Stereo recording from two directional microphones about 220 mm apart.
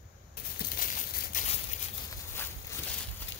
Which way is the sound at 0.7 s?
40° left (ahead or behind).